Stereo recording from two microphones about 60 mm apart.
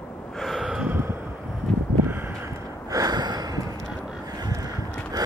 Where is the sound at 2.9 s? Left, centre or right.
Right.